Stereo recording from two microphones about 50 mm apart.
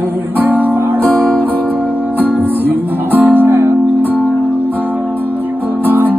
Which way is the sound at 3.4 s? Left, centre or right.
Right.